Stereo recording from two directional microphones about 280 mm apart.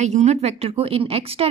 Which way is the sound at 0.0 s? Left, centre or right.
Right.